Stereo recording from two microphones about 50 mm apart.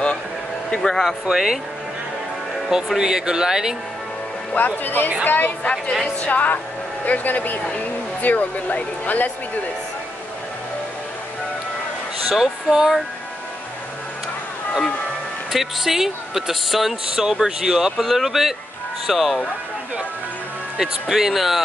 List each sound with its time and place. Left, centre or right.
0.7 s speech: centre
1.3 s speech: centre
3.0 s speech: centre
4.6 s speech: left
5.6 s a woman's voice: left
12.3 s speech: centre
15.5 s speech: centre
20.8 s speech: centre